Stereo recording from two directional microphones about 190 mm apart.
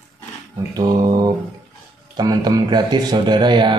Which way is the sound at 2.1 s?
20° right (ahead or behind).